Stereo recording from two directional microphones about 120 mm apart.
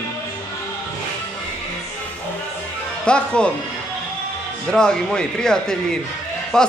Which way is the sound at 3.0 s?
10° left (ahead or behind).